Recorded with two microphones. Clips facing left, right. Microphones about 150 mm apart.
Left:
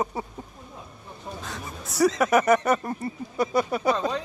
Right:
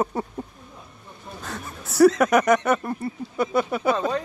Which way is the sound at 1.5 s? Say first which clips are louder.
Right 1 dB; centre (ahead or behind).